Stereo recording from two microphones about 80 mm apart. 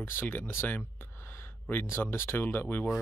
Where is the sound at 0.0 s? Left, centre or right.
Left.